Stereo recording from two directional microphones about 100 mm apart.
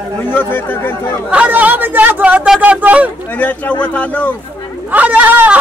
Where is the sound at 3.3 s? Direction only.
15° left (ahead or behind).